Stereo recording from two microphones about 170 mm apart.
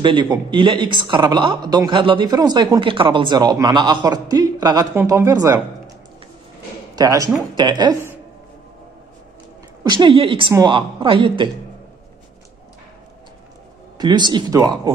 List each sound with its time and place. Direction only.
0.0 s speech: 25° right (ahead or behind)
7.0 s speech: 20° right (ahead or behind)
9.8 s speech: 30° right (ahead or behind)
13.9 s a man's voice: 25° right (ahead or behind)